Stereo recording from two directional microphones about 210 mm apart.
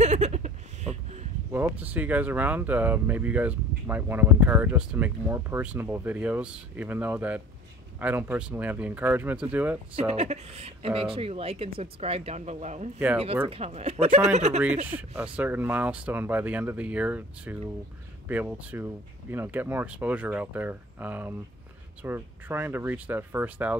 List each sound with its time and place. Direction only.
0.0 s a sound: 30° right (ahead or behind)
1.5 s speech: 10° right (ahead or behind)
9.9 s speech: 30° right (ahead or behind)
14.9 s speech: 10° right (ahead or behind)